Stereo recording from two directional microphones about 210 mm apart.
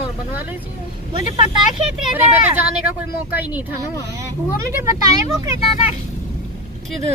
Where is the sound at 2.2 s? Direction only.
10° right (ahead or behind).